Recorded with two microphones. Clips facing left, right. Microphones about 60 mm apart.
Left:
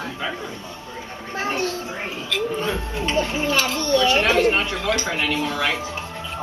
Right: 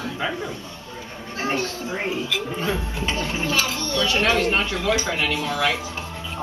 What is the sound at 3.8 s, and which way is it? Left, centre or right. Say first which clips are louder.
Speech: left 5 dB; left.